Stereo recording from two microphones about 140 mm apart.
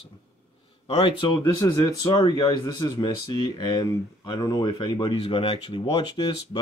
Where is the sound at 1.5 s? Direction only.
25° left (ahead or behind).